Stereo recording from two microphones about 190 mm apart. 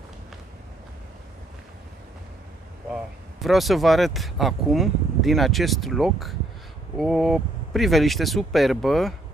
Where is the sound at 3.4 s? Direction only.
Centre (ahead or behind).